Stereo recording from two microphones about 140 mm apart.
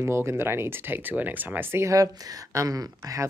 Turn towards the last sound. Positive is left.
turn(degrees=-25)  # may be behind; listen again after turning